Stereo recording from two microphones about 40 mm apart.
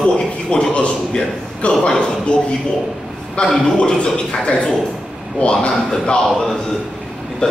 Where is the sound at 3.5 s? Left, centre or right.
Left.